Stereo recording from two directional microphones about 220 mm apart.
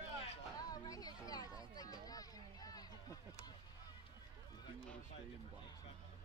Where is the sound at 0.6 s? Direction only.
15° left (ahead or behind).